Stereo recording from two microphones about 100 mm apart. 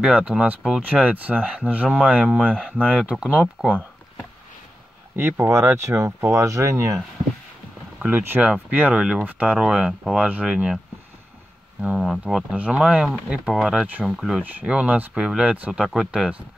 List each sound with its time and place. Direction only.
0.0 s speech: 10° right (ahead or behind)
5.1 s speech: 25° right (ahead or behind)
8.0 s speech: 20° right (ahead or behind)
11.8 s speech: 5° right (ahead or behind)
12.5 s speech: 15° right (ahead or behind)
12.8 s speech: 5° right (ahead or behind)
14.4 s speech: 15° right (ahead or behind)